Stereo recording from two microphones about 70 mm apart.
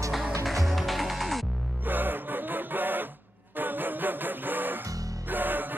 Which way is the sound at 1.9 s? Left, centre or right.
Right.